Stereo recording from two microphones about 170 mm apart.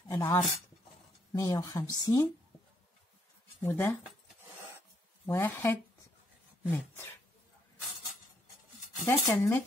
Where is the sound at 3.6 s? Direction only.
15° left (ahead or behind).